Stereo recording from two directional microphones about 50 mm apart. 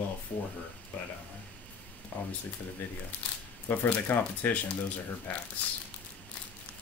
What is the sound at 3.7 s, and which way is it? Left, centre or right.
Speech, left.